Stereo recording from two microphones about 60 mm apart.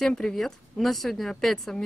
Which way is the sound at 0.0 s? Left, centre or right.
Centre.